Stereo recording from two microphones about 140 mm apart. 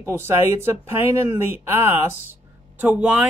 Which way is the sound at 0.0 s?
15° right (ahead or behind).